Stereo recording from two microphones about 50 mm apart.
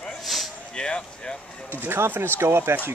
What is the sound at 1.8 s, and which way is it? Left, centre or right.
Speech, right.